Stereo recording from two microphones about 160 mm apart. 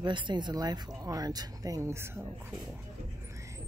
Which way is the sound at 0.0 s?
30° right (ahead or behind).